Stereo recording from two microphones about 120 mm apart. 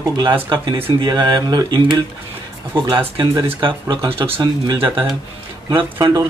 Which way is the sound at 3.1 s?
35° right (ahead or behind).